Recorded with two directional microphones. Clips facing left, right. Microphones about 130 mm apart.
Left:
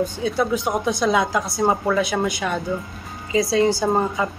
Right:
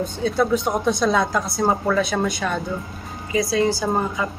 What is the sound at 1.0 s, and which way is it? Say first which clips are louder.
A woman's voice: even; 15° left (ahead or behind).